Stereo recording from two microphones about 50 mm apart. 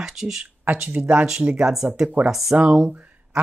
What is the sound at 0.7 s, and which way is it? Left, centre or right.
Speech, right.